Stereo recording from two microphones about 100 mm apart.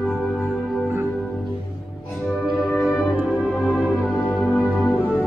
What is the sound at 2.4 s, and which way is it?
Music, centre (ahead or behind).